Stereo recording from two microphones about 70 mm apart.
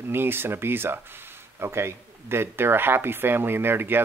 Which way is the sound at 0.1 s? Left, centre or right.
Right.